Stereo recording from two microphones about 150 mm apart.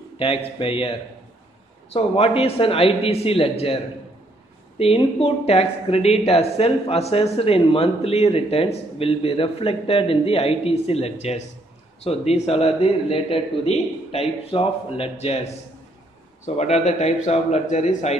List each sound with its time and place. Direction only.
0.2 s a man's voice: 35° left (ahead or behind)